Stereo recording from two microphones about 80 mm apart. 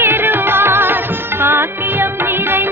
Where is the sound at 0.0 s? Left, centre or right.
Right.